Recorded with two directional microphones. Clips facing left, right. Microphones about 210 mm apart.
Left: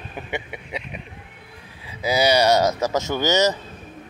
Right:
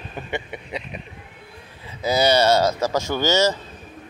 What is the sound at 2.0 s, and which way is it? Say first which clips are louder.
Speech: even; 10° left (ahead or behind).